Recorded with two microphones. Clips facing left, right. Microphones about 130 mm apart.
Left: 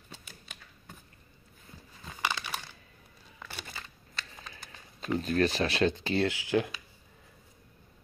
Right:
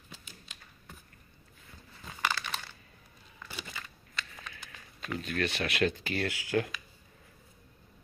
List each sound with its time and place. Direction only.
2.2 s crumpling: 15° left (ahead or behind)
3.7 s a sound: 30° left (ahead or behind)
4.6 s speech: 25° left (ahead or behind)